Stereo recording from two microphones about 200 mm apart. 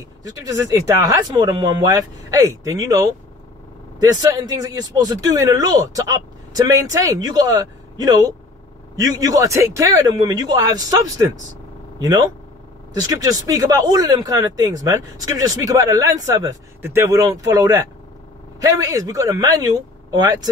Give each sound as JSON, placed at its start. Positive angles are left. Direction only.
{"t": 0.2, "sound": "speech", "side_deg": -15}